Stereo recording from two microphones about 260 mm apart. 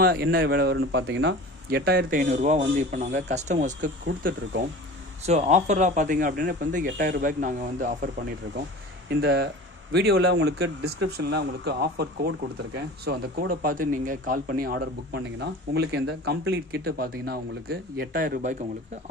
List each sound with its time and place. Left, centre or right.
0.0 s speech: right
4.0 s speech: right
5.2 s speech: right